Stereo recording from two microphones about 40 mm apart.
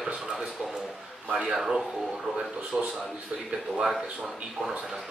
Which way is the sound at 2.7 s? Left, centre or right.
Right.